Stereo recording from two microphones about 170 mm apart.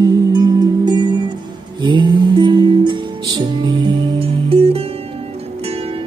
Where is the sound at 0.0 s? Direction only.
25° right (ahead or behind).